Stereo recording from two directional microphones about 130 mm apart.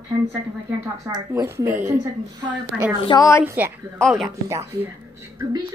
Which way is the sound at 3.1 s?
25° left (ahead or behind).